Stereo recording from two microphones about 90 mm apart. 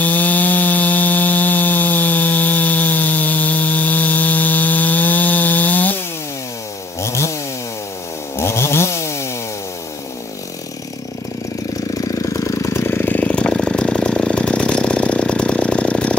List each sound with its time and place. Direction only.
0.0 s sawing: 20° left (ahead or behind)
7.0 s chainsaw: 30° left (ahead or behind)
8.4 s chainsaw: 30° left (ahead or behind)
11.9 s vehicle: 40° left (ahead or behind); by 16.2 s 10° left (ahead or behind)